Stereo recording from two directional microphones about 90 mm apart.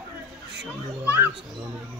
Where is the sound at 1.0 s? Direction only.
25° right (ahead or behind).